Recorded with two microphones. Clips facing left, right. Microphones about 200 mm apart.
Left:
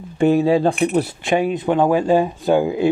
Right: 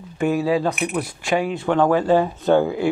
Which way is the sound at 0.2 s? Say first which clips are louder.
Left 5 dB; 30° left (ahead or behind).